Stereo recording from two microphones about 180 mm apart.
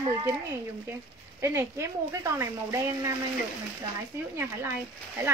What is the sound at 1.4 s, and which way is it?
A woman's voice, 15° right (ahead or behind).